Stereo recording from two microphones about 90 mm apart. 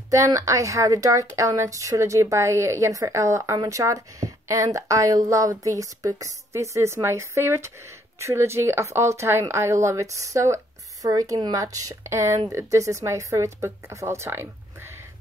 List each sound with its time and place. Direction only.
0.1 s a woman's voice: 35° right (ahead or behind)